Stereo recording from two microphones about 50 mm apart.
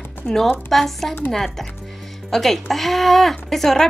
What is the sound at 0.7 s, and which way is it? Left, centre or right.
Speech, centre.